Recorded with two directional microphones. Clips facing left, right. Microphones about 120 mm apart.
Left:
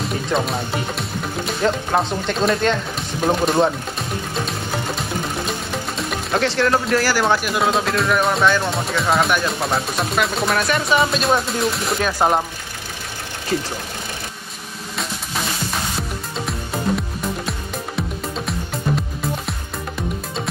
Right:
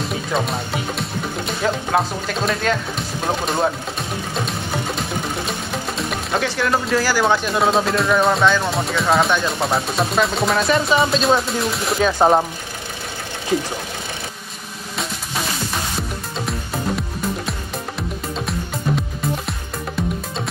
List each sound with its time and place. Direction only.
0.0 s speech: centre (ahead or behind)
5.5 s music: centre (ahead or behind)
6.6 s speech: centre (ahead or behind)
7.0 s speech: 15° right (ahead or behind)
7.3 s speech: centre (ahead or behind)
13.5 s speech: 15° right (ahead or behind)
16.0 s music: centre (ahead or behind)